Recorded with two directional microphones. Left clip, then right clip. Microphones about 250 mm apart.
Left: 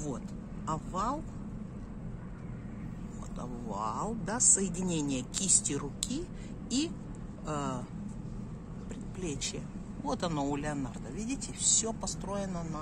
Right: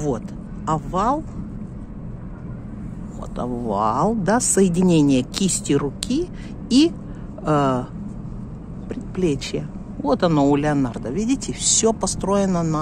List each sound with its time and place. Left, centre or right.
0.7 s speech: right
3.3 s speech: right
7.4 s speech: right
8.8 s speech: right